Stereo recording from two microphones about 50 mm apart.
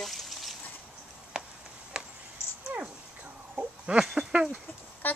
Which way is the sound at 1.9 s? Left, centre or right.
Centre.